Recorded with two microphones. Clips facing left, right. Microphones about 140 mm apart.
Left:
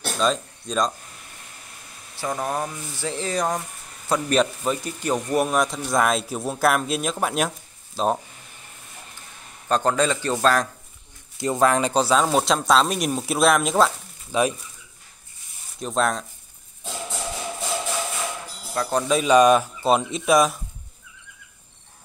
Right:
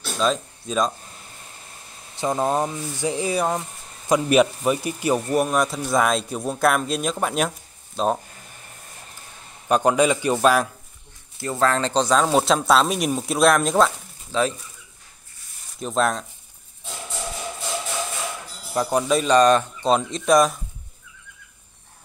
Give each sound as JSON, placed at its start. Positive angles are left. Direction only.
{"t": 0.2, "sound": "speech", "side_deg": 0}
{"t": 2.1, "sound": "speech", "side_deg": -25}
{"t": 5.3, "sound": "speech", "side_deg": 0}
{"t": 9.7, "sound": "speech", "side_deg": -10}
{"t": 11.3, "sound": "speech", "side_deg": 20}
{"t": 14.3, "sound": "speech", "side_deg": 15}
{"t": 15.8, "sound": "speech", "side_deg": 0}
{"t": 18.8, "sound": "speech", "side_deg": -15}
{"t": 19.0, "sound": "speech", "side_deg": 5}